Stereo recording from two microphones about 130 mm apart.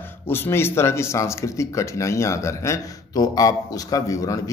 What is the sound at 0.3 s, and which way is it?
Speech, 20° left (ahead or behind).